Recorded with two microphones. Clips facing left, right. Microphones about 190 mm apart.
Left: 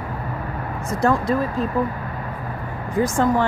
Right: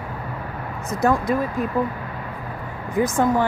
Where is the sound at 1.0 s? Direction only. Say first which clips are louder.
Even; 15° right (ahead or behind).